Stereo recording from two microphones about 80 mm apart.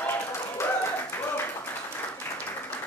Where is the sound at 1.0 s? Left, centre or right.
Left.